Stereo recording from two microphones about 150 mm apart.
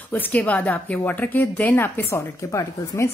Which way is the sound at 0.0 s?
10° left (ahead or behind).